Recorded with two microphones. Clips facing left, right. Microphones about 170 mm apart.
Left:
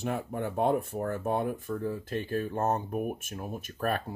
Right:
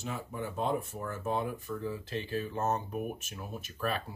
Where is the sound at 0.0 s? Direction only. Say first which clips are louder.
Left 6 dB; 60° left (ahead or behind).